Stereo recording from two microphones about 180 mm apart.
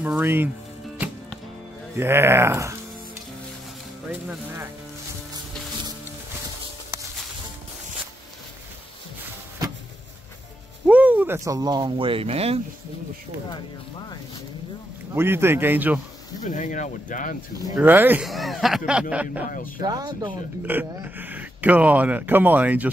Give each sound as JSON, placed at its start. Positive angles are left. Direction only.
{"t": 0.0, "sound": "speech", "side_deg": -10}
{"t": 2.0, "sound": "speech", "side_deg": -15}
{"t": 4.1, "sound": "speech", "side_deg": -10}
{"t": 10.9, "sound": "speech", "side_deg": -10}
{"t": 15.1, "sound": "speech", "side_deg": -10}
{"t": 16.4, "sound": "speech", "side_deg": 45}
{"t": 17.7, "sound": "speech", "side_deg": -10}
{"t": 19.8, "sound": "speech", "side_deg": -20}
{"t": 20.6, "sound": "speech", "side_deg": -10}